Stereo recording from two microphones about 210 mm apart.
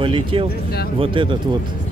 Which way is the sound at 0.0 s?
25° right (ahead or behind).